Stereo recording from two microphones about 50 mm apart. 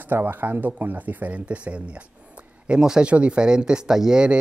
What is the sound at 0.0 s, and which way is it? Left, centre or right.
Speech, right.